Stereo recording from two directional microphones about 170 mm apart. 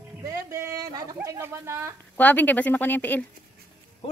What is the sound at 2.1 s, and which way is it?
Speech, 10° left (ahead or behind).